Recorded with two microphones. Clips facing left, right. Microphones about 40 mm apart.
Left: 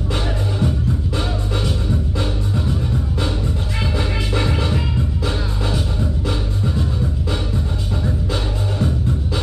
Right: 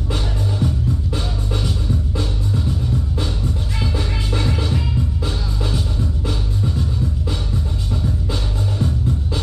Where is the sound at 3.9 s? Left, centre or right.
Left.